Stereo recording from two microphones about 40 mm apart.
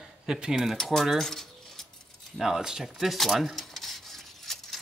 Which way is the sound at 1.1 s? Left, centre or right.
Centre.